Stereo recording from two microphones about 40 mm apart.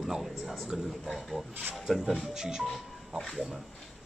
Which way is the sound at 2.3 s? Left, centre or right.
Centre.